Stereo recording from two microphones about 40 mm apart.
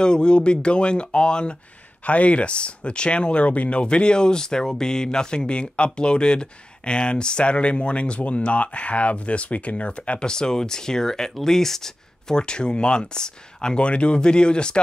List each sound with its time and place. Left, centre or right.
0.0 s speech: left
2.0 s speech: left
3.8 s speech: left